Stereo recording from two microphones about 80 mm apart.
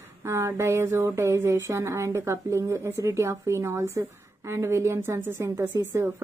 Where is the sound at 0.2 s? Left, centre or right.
Right.